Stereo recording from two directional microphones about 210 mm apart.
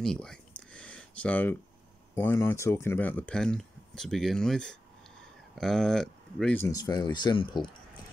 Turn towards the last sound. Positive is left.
turn(degrees=25)  # may be behind; listen again after turning